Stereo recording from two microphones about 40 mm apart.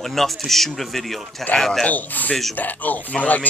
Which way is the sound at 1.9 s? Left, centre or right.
Left.